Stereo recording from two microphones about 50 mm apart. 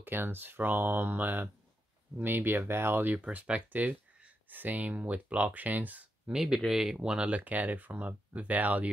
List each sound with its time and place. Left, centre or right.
0.0 s speech: right
3.3 s speech: right
6.2 s speech: centre; by 8.9 s right